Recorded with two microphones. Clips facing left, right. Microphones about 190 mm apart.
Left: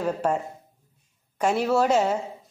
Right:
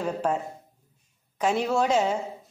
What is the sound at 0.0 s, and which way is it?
Speech, 10° left (ahead or behind).